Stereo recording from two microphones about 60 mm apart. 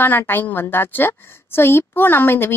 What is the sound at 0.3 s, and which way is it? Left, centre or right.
A woman's voice, left.